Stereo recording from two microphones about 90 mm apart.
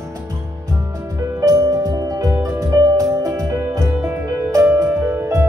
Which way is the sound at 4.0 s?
20° right (ahead or behind).